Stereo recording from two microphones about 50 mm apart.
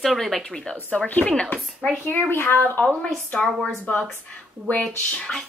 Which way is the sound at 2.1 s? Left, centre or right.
Left.